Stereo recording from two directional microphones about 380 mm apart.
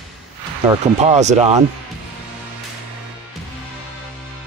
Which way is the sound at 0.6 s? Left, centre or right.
Centre.